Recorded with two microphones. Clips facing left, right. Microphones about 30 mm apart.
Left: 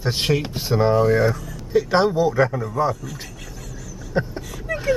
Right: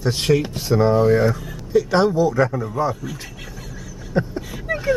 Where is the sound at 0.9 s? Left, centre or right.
Centre.